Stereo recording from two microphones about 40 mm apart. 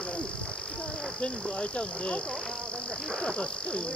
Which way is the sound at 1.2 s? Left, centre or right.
Left.